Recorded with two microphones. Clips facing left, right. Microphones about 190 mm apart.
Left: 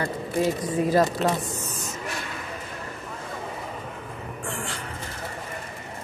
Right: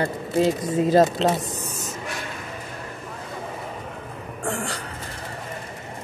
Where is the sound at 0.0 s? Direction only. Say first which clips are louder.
Right 3 dB; 25° right (ahead or behind).